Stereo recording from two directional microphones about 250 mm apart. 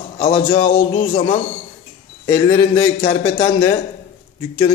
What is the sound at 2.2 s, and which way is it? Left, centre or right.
A man's voice, centre.